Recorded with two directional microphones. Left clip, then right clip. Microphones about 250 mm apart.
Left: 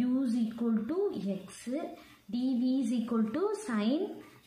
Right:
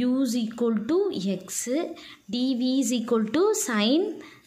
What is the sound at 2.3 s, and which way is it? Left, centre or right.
A woman's voice, right.